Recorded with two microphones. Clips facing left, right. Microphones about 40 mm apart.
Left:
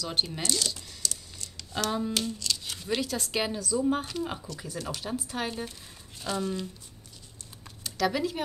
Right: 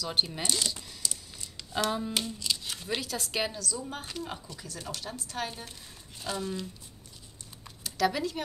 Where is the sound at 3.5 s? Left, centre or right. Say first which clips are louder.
Left 10 dB; centre.